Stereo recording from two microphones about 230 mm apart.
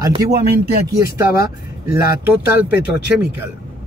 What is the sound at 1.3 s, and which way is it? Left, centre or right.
Speech, left.